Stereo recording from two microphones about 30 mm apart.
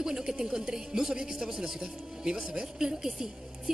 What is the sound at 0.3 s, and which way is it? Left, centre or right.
Speech, right.